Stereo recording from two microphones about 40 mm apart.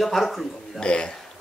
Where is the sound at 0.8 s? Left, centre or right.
Left.